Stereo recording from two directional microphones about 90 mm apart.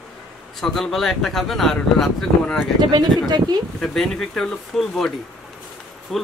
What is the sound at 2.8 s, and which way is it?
Speech, 50° right (ahead or behind).